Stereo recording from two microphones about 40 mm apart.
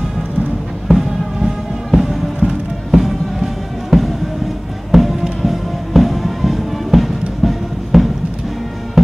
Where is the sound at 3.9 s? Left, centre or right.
Centre.